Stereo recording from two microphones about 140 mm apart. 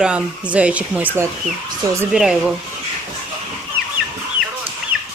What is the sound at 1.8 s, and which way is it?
Speech, 25° right (ahead or behind).